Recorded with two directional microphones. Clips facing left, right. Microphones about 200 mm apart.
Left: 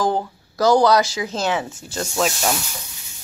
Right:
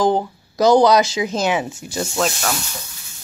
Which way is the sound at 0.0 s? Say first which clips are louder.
Right 4 dB; 20° right (ahead or behind).